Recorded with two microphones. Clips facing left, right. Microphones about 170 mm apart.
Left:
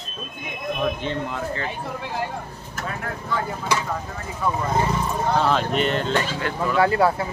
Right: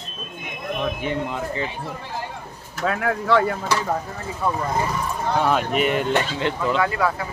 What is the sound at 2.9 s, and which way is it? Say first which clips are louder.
Speech: right 10 dB; 85° right.